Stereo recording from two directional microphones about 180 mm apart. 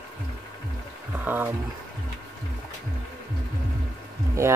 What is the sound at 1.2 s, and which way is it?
Speech, 10° right (ahead or behind).